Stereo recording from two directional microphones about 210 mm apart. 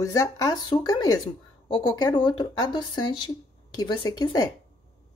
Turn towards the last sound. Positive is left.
turn(degrees=20)  # may be behind; listen again after turning